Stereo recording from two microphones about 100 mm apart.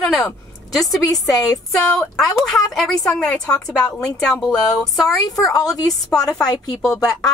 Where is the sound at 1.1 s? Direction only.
40° left (ahead or behind).